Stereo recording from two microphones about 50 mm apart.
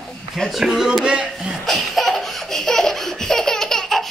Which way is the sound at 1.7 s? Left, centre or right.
Centre.